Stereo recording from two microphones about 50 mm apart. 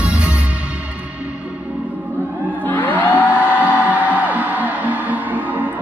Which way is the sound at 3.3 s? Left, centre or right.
Right.